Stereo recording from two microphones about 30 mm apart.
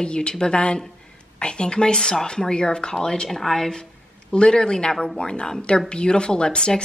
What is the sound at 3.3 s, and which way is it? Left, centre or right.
Speech, centre.